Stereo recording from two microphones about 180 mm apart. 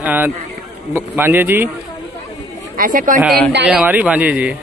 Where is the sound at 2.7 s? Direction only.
50° right (ahead or behind).